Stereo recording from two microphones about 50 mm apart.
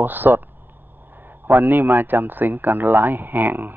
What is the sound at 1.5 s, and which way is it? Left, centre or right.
Speech, right.